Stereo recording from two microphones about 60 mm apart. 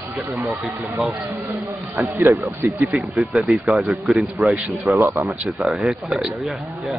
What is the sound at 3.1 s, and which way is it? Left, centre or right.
Speech, centre.